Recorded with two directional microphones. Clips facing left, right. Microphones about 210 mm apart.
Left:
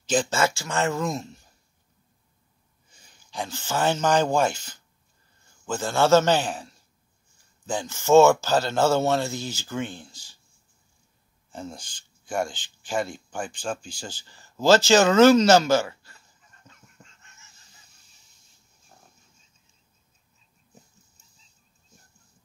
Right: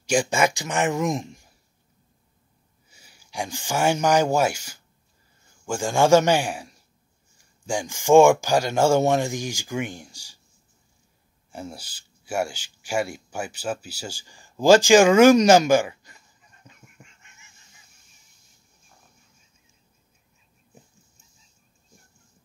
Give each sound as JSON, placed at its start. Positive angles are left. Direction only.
{"t": 0.0, "sound": "speech", "side_deg": -10}
{"t": 2.9, "sound": "speech", "side_deg": -10}
{"t": 11.5, "sound": "speech", "side_deg": -10}